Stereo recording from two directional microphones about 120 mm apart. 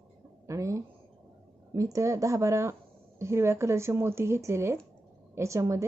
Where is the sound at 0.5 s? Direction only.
25° right (ahead or behind).